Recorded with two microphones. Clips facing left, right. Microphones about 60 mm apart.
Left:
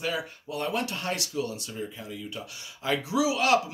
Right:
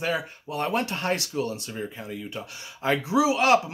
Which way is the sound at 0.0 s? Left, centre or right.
Right.